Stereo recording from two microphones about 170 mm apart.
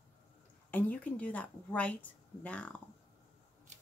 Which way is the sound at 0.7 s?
10° left (ahead or behind).